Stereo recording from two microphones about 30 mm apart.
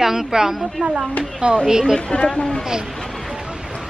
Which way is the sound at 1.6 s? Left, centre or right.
Right.